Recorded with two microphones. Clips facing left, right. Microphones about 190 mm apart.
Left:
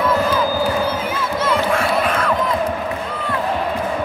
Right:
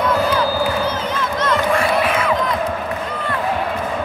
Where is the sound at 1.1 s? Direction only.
5° left (ahead or behind).